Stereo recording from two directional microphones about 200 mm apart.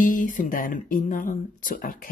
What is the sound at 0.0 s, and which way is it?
A woman's voice, 40° left (ahead or behind).